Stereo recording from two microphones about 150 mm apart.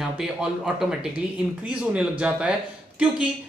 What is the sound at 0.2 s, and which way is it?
Speech, 5° right (ahead or behind).